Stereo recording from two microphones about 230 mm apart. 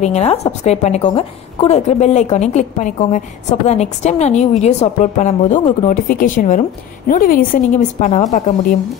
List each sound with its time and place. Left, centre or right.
0.0 s a woman's voice: left